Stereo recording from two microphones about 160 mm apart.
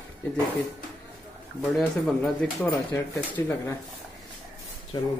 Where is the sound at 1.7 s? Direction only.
5° left (ahead or behind).